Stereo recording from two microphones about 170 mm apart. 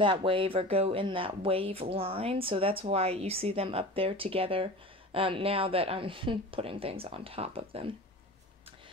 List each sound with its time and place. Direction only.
0.0 s speech: 30° right (ahead or behind)